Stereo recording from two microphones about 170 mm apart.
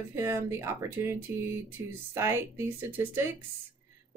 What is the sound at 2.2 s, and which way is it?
Speech, 15° right (ahead or behind).